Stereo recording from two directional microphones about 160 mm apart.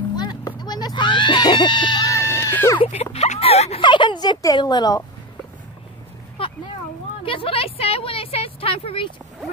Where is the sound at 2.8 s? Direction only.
40° left (ahead or behind); by 5.0 s 25° left (ahead or behind).